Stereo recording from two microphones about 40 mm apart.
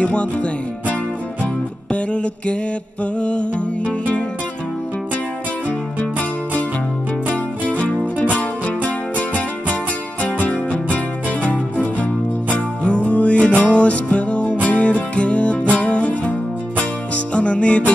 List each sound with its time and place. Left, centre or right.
0.0 s music: left
7.8 s music: left